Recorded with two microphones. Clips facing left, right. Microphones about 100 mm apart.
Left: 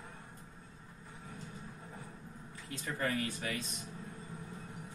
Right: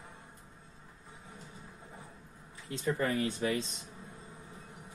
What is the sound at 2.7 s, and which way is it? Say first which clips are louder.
Speech: right 5 dB; 25° right (ahead or behind).